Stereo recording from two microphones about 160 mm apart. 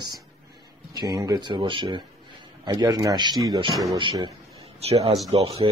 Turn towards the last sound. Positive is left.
turn(degrees=-35)  # may be behind; listen again after turning